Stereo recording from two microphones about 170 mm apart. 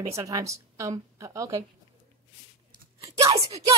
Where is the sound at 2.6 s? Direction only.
20° right (ahead or behind).